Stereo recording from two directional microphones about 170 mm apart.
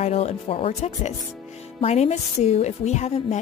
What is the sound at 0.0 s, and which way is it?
A woman's voice, 40° left (ahead or behind).